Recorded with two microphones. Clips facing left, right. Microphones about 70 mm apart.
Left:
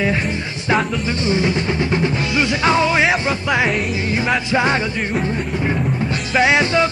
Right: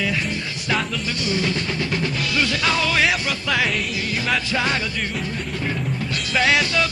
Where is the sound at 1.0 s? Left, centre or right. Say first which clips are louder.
Left 5 dB; left.